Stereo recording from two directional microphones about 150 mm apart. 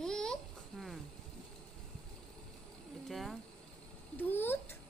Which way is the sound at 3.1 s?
Centre (ahead or behind).